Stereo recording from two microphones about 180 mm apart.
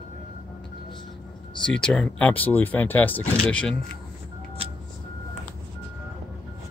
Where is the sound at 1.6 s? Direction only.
5° left (ahead or behind).